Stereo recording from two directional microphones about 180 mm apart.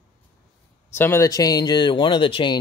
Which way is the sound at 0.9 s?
15° left (ahead or behind).